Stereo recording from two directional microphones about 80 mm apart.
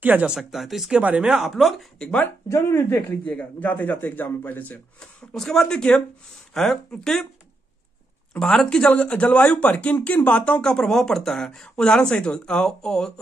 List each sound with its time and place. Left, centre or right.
0.0 s speech: centre
0.4 s speech: centre
2.5 s speech: left
3.3 s a man's voice: centre
5.3 s speech: centre
8.4 s speech: centre